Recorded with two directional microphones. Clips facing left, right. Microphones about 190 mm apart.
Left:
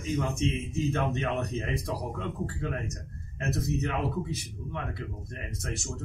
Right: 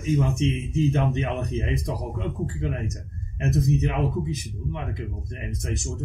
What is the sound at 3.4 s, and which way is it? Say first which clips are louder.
A man's voice: right 6 dB; 15° right (ahead or behind).